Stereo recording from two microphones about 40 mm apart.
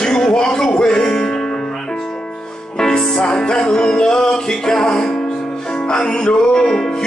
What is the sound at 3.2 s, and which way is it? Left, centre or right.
Music, left.